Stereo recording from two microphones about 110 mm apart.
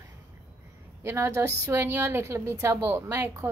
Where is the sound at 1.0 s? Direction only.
25° right (ahead or behind).